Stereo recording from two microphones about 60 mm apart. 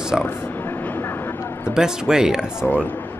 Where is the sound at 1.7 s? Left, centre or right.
Centre.